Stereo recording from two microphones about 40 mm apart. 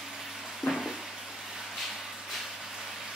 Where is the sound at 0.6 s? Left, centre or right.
Centre.